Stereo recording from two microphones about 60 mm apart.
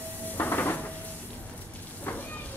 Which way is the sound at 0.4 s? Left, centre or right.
Left.